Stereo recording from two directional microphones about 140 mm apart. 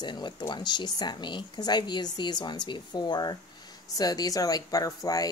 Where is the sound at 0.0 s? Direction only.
30° left (ahead or behind).